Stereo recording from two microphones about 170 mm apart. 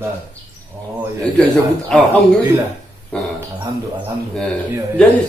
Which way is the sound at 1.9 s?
5° left (ahead or behind).